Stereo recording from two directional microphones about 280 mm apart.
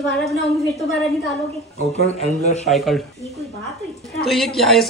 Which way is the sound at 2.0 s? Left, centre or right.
Left.